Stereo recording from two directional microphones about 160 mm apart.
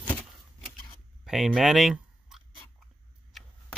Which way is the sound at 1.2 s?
Centre (ahead or behind).